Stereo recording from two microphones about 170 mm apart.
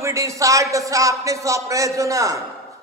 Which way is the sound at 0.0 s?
20° right (ahead or behind).